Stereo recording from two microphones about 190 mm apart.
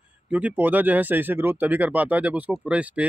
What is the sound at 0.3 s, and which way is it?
Speech, 5° right (ahead or behind).